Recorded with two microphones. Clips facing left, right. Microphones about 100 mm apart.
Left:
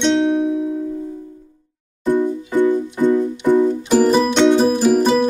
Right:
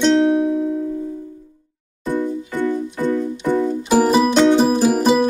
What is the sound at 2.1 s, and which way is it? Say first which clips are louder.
Music: left 4 dB; 15° left (ahead or behind).